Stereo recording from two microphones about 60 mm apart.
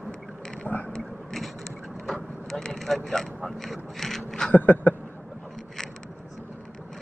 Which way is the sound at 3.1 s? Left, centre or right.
Centre.